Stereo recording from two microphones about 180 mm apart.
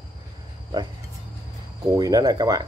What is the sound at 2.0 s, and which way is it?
Speech, 20° right (ahead or behind).